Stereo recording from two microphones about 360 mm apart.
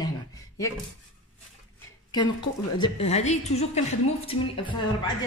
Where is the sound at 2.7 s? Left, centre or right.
Centre.